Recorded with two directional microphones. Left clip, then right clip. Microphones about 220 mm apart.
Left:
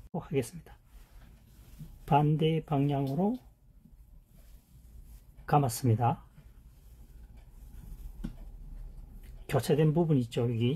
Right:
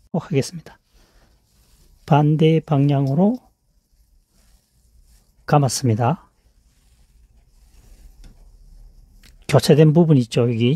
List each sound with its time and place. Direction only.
0.1 s speech: 50° right (ahead or behind)
2.0 s speech: 45° right (ahead or behind)
5.4 s speech: 45° right (ahead or behind)
9.2 s speech: 45° right (ahead or behind)